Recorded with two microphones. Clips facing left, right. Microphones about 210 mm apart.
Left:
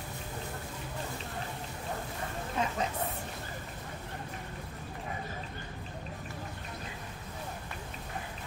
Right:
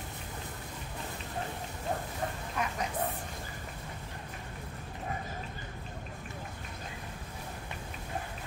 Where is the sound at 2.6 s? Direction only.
25° left (ahead or behind).